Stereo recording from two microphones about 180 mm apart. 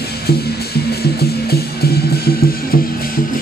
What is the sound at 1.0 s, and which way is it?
Music, 60° left (ahead or behind).